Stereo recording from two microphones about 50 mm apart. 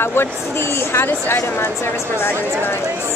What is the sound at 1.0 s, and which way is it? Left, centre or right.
A woman's voice, left.